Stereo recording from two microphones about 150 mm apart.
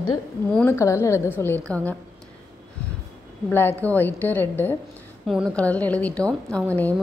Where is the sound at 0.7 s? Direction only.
20° left (ahead or behind).